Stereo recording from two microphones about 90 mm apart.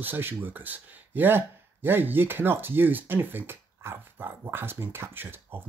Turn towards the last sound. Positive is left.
turn(degrees=-25)  # may be behind; listen again after turning